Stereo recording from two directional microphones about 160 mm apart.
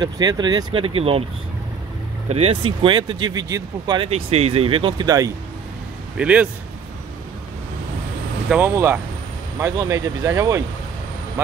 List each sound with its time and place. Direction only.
0.0 s speech: 25° right (ahead or behind)
2.2 s speech: 40° right (ahead or behind)
4.1 s speech: 40° right (ahead or behind); by 5.3 s 20° right (ahead or behind)
6.1 s speech: 10° right (ahead or behind)
8.5 s speech: 10° right (ahead or behind)